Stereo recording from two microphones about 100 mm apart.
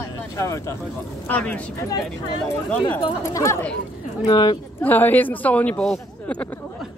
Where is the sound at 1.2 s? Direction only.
15° left (ahead or behind).